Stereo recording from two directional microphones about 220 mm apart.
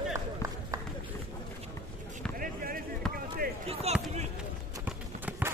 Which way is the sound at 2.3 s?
40° right (ahead or behind).